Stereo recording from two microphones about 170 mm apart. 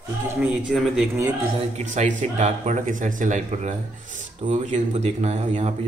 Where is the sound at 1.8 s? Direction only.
45° right (ahead or behind).